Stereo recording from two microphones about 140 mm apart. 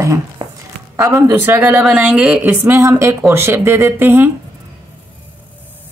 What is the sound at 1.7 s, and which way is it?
Speech, 5° right (ahead or behind).